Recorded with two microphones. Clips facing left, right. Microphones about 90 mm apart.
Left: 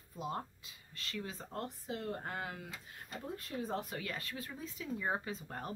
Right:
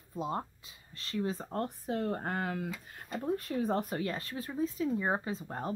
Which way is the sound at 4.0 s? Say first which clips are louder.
Right 7 dB; 35° right (ahead or behind).